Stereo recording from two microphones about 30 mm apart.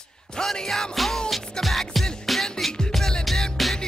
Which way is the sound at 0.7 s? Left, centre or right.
Centre.